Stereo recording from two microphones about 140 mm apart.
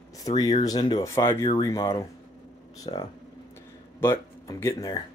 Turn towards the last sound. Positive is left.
turn(degrees=20)  # may be behind; listen again after turning